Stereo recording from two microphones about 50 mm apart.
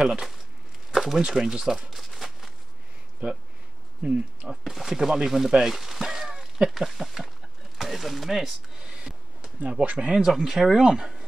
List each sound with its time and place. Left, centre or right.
0.0 s speech: centre
0.9 s a sound: centre
3.2 s speech: right
4.0 s speech: centre
4.6 s speech: centre
6.9 s a sound: centre
9.6 s speech: right